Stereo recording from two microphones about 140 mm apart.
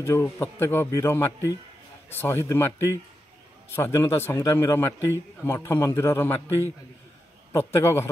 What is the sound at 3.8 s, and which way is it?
A man's voice, 20° left (ahead or behind).